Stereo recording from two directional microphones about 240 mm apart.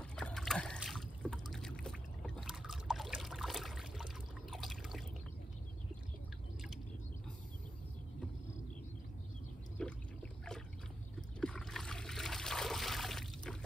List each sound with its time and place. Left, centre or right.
0.0 s boat: centre
9.8 s a sound: centre
11.1 s trickle: centre